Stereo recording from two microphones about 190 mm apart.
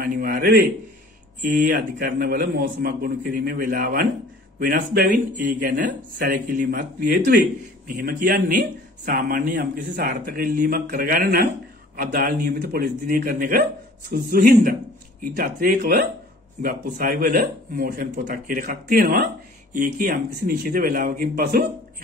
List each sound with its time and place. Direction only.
0.0 s a man's voice: 50° right (ahead or behind)